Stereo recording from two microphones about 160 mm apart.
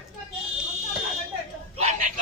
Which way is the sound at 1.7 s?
45° right (ahead or behind).